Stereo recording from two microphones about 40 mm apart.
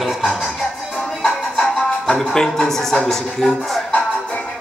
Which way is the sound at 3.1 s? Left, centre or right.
Centre.